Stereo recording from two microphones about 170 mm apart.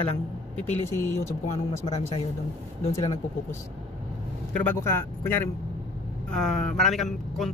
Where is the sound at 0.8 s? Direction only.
15° left (ahead or behind).